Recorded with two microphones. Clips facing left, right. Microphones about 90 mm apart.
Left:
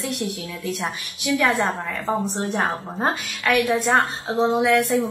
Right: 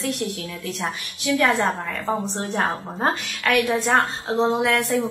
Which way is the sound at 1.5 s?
15° left (ahead or behind).